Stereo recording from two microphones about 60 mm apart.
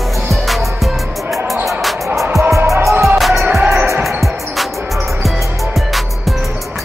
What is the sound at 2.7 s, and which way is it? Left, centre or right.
Music, right.